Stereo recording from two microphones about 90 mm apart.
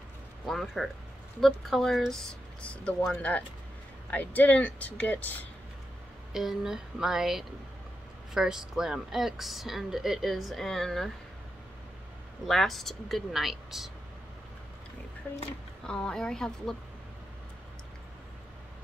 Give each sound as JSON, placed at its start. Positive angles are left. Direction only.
{"t": 0.5, "sound": "speech", "side_deg": 0}
{"t": 6.3, "sound": "speech", "side_deg": -5}
{"t": 12.4, "sound": "speech", "side_deg": 0}
{"t": 15.9, "sound": "speech", "side_deg": 10}